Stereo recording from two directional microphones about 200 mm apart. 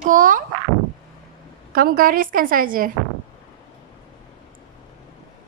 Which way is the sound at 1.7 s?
45° right (ahead or behind).